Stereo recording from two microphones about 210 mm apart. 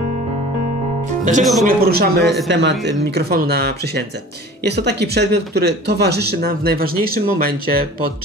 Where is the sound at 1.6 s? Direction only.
45° right (ahead or behind).